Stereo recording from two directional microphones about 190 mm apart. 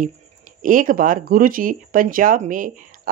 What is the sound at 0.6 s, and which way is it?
A woman's voice, 45° right (ahead or behind).